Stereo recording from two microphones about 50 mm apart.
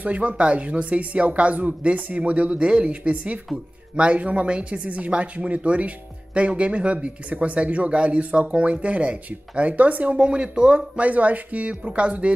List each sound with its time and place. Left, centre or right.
0.0 s speech: right
10.2 s speech: right